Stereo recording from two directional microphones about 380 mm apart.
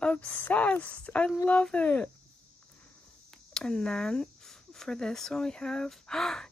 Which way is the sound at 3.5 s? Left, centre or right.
Centre.